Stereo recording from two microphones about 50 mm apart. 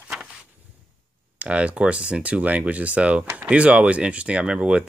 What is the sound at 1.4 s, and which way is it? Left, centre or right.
Speech, right.